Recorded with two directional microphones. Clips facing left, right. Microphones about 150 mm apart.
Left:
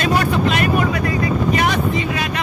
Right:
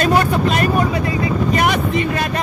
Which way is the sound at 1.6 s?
45° right (ahead or behind).